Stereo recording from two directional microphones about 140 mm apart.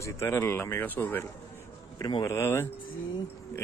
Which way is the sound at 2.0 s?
25° left (ahead or behind).